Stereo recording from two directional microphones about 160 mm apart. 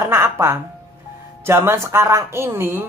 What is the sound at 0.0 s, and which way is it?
A woman's voice, 15° right (ahead or behind).